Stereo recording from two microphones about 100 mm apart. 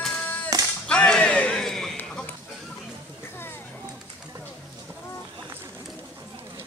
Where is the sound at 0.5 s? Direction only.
40° right (ahead or behind).